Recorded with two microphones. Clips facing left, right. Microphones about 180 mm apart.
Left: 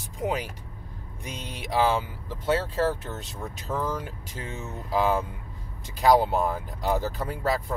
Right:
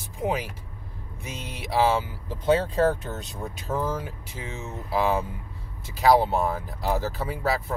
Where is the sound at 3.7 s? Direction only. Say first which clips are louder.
Right 2 dB; 10° right (ahead or behind).